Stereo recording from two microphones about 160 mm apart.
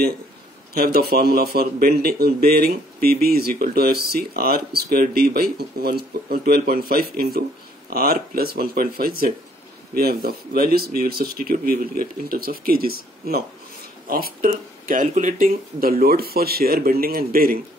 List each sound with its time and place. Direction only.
0.7 s a man's voice: 75° right (ahead or behind)